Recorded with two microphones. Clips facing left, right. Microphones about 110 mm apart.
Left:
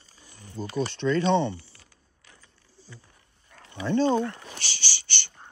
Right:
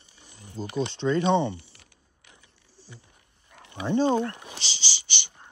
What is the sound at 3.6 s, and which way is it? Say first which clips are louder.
Speech: even; 15° right (ahead or behind).